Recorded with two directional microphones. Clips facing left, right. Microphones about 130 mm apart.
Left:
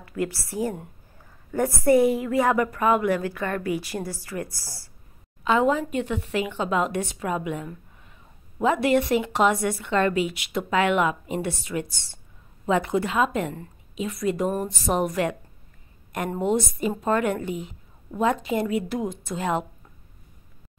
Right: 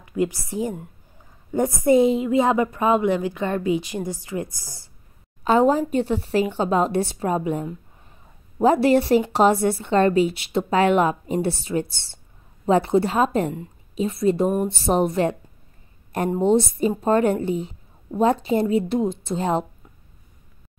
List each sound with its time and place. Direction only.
0.0 s a woman's voice: 20° right (ahead or behind)
5.4 s a woman's voice: 35° right (ahead or behind)
16.3 s a woman's voice: 25° right (ahead or behind)